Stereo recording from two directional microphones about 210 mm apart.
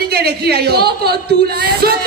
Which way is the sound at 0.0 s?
50° right (ahead or behind).